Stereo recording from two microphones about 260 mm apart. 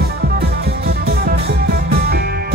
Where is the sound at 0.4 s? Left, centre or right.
Right.